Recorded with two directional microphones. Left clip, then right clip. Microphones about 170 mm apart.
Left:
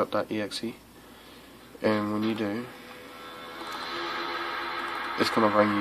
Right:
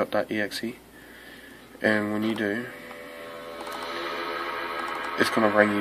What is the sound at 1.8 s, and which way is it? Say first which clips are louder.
Speech: right 2 dB; 20° left (ahead or behind).